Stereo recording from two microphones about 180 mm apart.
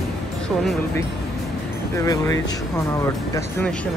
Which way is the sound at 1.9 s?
20° left (ahead or behind).